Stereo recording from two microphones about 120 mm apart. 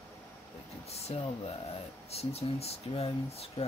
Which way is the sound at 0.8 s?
60° left (ahead or behind).